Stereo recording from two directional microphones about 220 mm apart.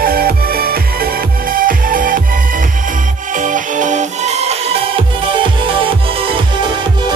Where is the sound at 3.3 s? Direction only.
35° right (ahead or behind).